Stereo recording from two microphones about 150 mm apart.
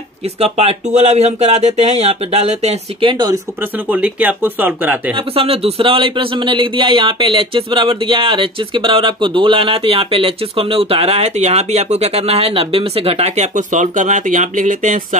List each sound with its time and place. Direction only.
0.4 s speech: 45° right (ahead or behind)
3.1 s speech: 30° right (ahead or behind)
3.8 s speech: 10° right (ahead or behind)
5.1 s a man's voice: 40° right (ahead or behind); by 15.0 s 55° right (ahead or behind)